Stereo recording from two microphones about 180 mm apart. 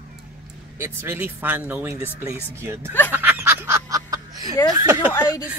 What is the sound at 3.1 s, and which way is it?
Music, 10° right (ahead or behind).